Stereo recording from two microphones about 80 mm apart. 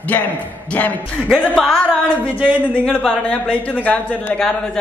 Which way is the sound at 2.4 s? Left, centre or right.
Centre.